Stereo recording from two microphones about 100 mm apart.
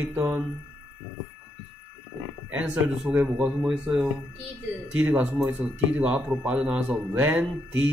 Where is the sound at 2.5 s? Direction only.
15° right (ahead or behind).